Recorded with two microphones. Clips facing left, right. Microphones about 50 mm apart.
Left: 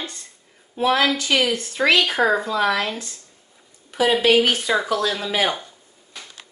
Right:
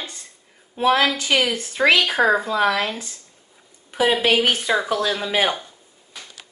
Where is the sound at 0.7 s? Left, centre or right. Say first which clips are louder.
Right 1 dB; right.